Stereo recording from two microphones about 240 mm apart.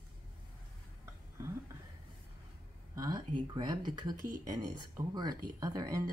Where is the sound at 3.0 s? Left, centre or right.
Centre.